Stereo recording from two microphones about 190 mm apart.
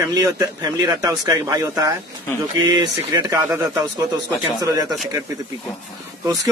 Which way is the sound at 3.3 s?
15° right (ahead or behind).